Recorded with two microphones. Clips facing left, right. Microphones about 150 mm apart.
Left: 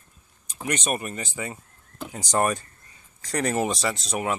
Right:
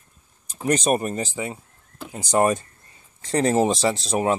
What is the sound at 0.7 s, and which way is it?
Speech, 35° right (ahead or behind).